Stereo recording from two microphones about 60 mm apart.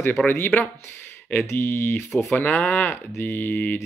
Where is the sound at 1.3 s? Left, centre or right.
Left.